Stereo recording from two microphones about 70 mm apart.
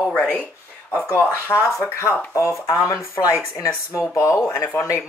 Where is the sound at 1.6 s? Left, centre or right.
Left.